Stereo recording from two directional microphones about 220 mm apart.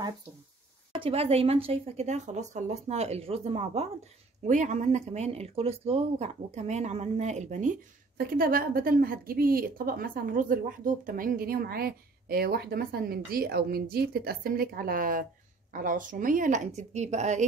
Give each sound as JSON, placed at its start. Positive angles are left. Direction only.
{"t": 0.9, "sound": "a woman's voice", "side_deg": -25}